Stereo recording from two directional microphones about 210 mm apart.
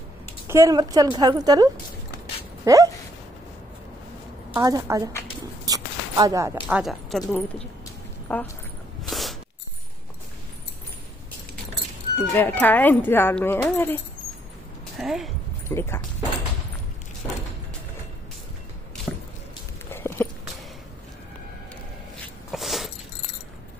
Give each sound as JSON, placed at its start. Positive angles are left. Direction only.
{"t": 0.5, "sound": "a woman's voice", "side_deg": -15}
{"t": 2.6, "sound": "dog", "side_deg": -15}
{"t": 4.6, "sound": "a woman's voice", "side_deg": -15}
{"t": 5.7, "sound": "zipper", "side_deg": -15}
{"t": 6.8, "sound": "speech", "side_deg": 0}
{"t": 9.0, "sound": "a sound", "side_deg": 0}
{"t": 12.2, "sound": "speech", "side_deg": 10}
{"t": 15.0, "sound": "speech", "side_deg": 0}
{"t": 15.7, "sound": "speech", "side_deg": 10}
{"t": 19.9, "sound": "a sound", "side_deg": 10}
{"t": 22.2, "sound": "a sound", "side_deg": 0}